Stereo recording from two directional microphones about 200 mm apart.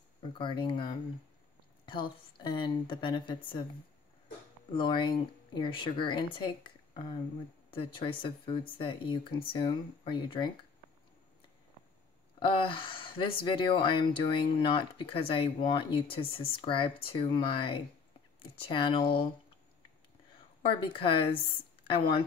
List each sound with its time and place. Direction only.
0.2 s speech: 25° left (ahead or behind)
4.7 s speech: 25° left (ahead or behind)
12.4 s speech: 25° left (ahead or behind)
20.8 s speech: 25° left (ahead or behind)